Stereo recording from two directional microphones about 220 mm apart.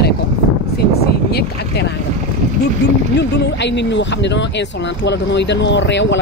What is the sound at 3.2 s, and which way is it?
Speech, 50° left (ahead or behind).